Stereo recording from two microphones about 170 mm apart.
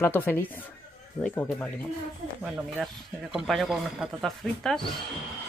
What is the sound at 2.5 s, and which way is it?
Speech, 5° right (ahead or behind).